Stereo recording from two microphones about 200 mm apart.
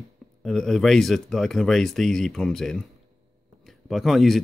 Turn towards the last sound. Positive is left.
turn(degrees=0)  # may be behind; listen again after turning